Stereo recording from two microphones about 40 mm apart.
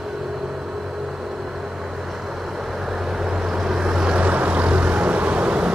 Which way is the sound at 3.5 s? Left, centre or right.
Centre.